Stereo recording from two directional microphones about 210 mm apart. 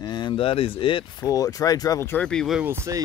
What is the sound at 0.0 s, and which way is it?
Speech, 20° left (ahead or behind).